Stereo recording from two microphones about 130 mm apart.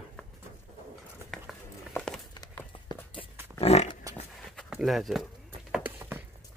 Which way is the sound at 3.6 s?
55° left (ahead or behind).